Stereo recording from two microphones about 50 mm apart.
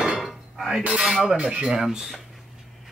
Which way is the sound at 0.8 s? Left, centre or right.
Centre.